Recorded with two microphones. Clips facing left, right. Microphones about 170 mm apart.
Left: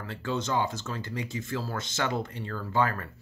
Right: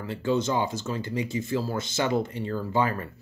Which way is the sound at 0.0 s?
10° right (ahead or behind).